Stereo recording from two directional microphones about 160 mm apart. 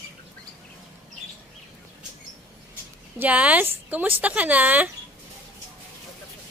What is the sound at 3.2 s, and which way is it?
Speech, 10° right (ahead or behind).